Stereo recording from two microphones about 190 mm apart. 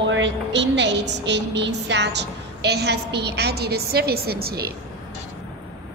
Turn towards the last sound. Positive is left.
turn(degrees=-55)  # may be behind; listen again after turning